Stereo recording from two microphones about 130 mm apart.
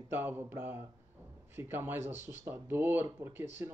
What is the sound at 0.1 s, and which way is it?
Speech, 15° right (ahead or behind).